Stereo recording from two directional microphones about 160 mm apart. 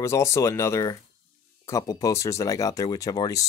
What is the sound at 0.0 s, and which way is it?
Speech, 15° left (ahead or behind).